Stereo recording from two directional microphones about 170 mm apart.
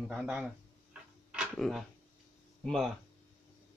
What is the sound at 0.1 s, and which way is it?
Speech, 5° right (ahead or behind).